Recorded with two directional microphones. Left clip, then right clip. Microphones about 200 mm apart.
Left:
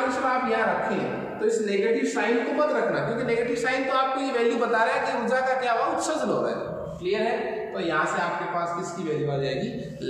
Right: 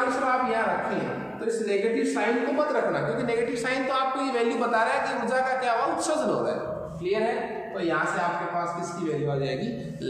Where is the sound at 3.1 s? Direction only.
25° right (ahead or behind).